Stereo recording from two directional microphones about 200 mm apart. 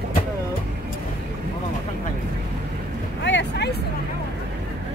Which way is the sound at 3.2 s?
60° left (ahead or behind).